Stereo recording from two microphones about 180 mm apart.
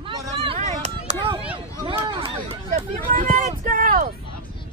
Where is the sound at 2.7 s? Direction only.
50° right (ahead or behind).